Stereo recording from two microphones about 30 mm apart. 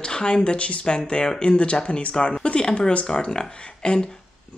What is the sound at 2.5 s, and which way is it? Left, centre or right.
Speech, left.